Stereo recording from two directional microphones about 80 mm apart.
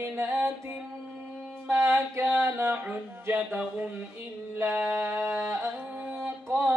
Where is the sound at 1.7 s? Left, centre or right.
Right.